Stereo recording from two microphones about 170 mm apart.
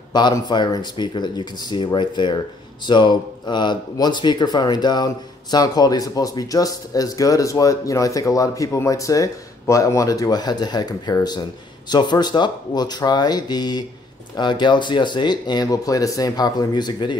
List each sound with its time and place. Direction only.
0.1 s speech: 25° left (ahead or behind)